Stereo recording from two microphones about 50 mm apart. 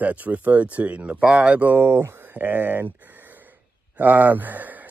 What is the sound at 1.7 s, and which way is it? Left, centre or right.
Speech, right.